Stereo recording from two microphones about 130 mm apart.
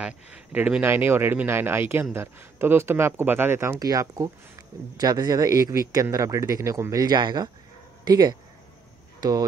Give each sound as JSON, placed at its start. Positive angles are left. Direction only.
{"t": 0.0, "sound": "a man's voice", "side_deg": -10}